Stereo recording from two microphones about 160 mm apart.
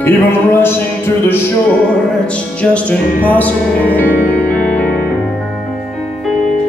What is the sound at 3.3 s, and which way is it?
Music, 10° left (ahead or behind).